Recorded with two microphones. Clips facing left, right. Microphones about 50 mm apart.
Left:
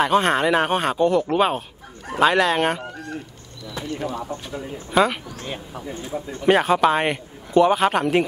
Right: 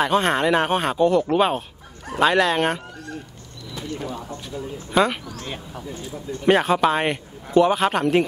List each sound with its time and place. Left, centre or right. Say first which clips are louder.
0.0 s a man's voice: left 1 dB; centre
3.7 s speech: left 3 dB; left
4.9 s a man's voice: left 1 dB; centre
5.9 s speech: left 2 dB; left
6.4 s a man's voice: left 1 dB; centre